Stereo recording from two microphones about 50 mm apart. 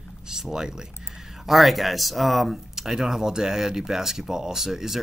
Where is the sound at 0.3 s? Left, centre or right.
Centre.